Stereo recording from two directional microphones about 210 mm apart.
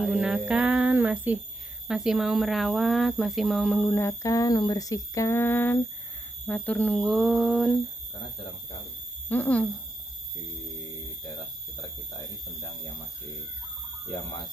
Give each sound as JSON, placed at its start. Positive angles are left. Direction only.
{"t": 0.0, "sound": "speech", "side_deg": -5}
{"t": 9.3, "sound": "speech", "side_deg": 5}
{"t": 14.1, "sound": "speech", "side_deg": 20}